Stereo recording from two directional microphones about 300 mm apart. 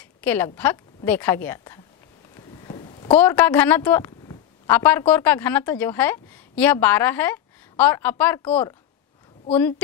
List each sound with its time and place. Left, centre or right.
0.2 s a woman's voice: centre
2.6 s a sound: centre
3.1 s a woman's voice: centre
9.5 s a woman's voice: centre